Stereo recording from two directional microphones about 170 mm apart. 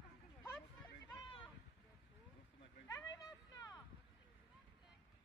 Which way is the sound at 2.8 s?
20° left (ahead or behind).